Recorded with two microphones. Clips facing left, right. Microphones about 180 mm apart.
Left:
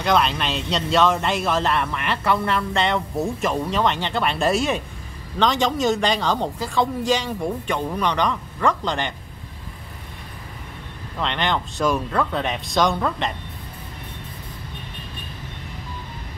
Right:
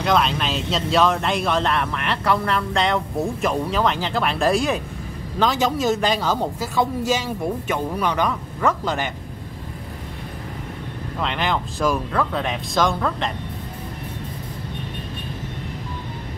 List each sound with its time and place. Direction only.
0.0 s speech: centre (ahead or behind)
11.1 s speech: 5° right (ahead or behind)